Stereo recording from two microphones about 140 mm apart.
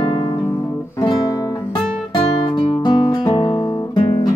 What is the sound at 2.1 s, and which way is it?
Music, 30° left (ahead or behind).